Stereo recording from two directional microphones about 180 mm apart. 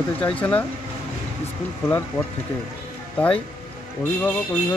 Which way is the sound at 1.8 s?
10° left (ahead or behind).